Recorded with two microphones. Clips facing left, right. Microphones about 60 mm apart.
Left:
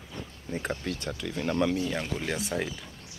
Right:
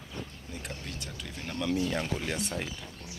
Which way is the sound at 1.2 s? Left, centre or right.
Left.